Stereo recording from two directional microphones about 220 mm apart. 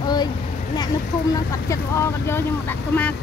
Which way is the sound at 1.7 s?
10° left (ahead or behind).